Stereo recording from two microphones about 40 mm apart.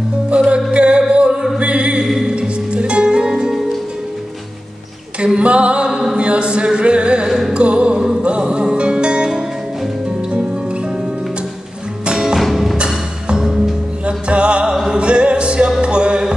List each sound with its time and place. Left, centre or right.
0.4 s music: right
2.0 s music: centre
2.3 s music: right
5.2 s female singing: right
6.1 s a sound: right
7.2 s music: centre
7.5 s music: right
12.1 s music: centre
12.4 s music: centre
12.7 s music: right
14.0 s music: right